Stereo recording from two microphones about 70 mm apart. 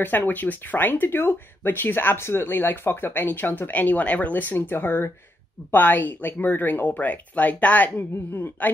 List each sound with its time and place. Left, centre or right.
0.0 s speech: left